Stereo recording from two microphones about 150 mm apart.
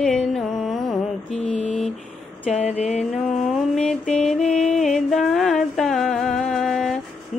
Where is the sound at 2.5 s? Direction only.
45° left (ahead or behind).